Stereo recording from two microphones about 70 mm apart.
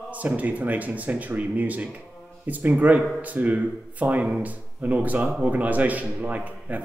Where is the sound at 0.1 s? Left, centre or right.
Right.